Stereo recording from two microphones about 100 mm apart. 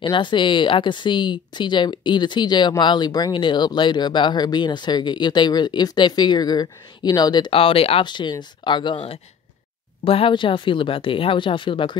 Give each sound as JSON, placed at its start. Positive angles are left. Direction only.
{"t": 0.0, "sound": "speech", "side_deg": 55}
{"t": 7.5, "sound": "speech", "side_deg": 70}
{"t": 8.0, "sound": "speech", "side_deg": 50}
{"t": 10.0, "sound": "speech", "side_deg": 65}